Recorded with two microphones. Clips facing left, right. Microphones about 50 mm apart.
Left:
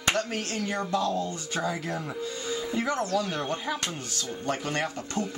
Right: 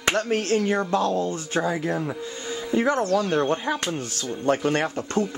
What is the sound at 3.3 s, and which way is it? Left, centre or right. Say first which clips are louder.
Speech: right 8 dB; right.